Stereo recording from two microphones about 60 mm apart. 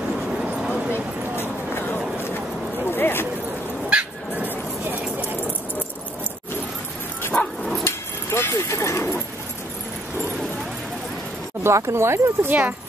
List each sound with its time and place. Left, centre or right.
1.3 s a sound: left
3.9 s dog: centre
7.3 s dog: centre
7.8 s a sound: left
11.6 s speech: right
12.4 s speech: right